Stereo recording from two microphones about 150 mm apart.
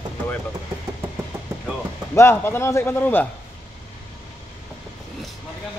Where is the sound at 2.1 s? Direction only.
15° left (ahead or behind).